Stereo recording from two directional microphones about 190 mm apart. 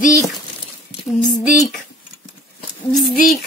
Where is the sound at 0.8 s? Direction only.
40° left (ahead or behind).